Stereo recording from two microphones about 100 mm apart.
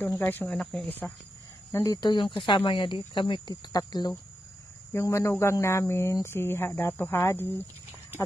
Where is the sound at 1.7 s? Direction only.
35° left (ahead or behind).